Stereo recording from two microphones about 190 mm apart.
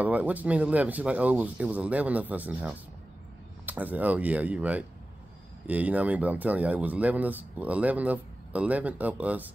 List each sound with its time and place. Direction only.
0.0 s speech: 10° right (ahead or behind)